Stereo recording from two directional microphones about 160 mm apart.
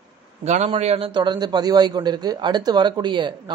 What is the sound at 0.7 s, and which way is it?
A man's voice, 40° right (ahead or behind).